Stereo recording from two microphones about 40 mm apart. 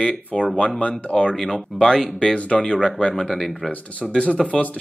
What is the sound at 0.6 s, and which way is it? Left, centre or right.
Speech, left.